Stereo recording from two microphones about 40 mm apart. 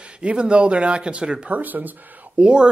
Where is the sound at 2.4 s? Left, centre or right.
Right.